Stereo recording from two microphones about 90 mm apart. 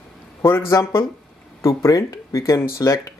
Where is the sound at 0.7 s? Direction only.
35° left (ahead or behind).